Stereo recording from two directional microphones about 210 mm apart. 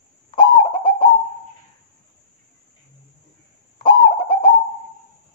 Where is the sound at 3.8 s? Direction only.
20° left (ahead or behind).